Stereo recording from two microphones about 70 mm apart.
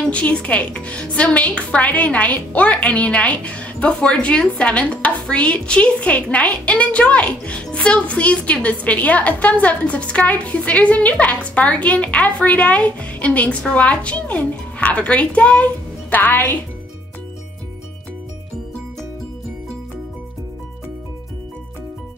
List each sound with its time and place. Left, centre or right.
0.1 s a woman's voice: centre